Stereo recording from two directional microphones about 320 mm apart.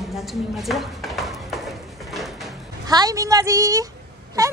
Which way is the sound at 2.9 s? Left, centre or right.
Centre.